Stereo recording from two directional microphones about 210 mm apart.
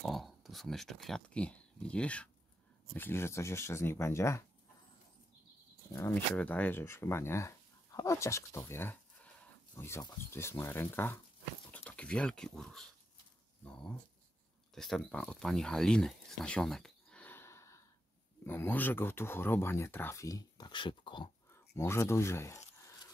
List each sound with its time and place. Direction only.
0.0 s speech: centre (ahead or behind)
5.9 s speech: 10° left (ahead or behind)